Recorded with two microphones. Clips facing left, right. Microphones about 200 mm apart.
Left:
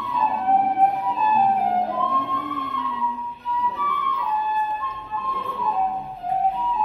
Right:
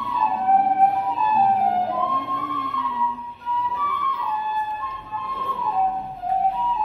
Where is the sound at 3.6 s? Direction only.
Centre (ahead or behind).